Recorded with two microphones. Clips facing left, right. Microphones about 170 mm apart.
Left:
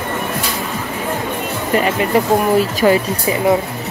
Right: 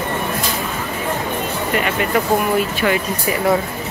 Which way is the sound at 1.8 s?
30° left (ahead or behind).